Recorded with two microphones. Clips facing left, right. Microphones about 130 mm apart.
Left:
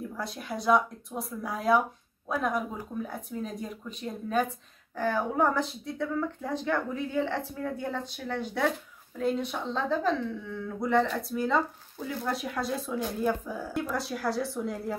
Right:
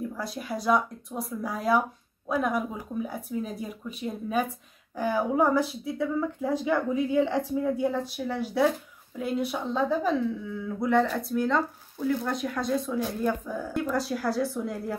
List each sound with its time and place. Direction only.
0.1 s speech: centre (ahead or behind)